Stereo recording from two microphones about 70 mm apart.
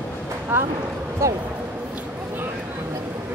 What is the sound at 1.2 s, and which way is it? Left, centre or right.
Speech, right.